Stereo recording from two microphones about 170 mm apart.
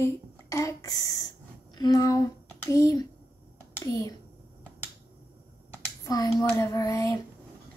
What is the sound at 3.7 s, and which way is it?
Speech, 20° left (ahead or behind).